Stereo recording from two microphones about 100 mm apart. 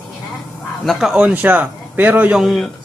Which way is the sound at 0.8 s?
Centre (ahead or behind).